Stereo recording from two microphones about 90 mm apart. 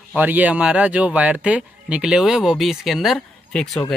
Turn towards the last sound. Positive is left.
turn(degrees=5)  # may be behind; listen again after turning